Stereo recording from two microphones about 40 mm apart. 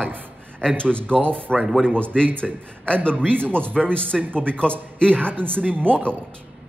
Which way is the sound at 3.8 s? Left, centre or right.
Left.